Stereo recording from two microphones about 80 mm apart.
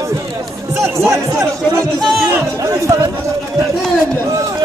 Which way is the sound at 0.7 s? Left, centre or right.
Right.